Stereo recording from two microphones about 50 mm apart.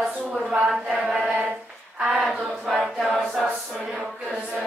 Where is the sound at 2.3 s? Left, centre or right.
Centre.